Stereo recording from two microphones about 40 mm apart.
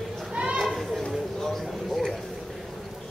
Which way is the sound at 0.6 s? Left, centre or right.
Centre.